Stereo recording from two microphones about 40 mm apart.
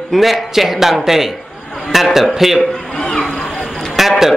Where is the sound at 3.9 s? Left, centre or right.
Centre.